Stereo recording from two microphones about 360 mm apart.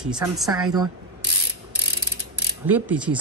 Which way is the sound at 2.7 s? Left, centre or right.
Centre.